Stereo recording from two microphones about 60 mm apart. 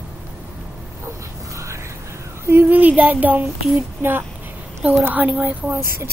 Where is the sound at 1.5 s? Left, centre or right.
Right.